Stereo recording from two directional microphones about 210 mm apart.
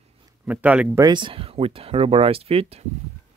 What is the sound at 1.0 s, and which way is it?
Speech, 20° right (ahead or behind).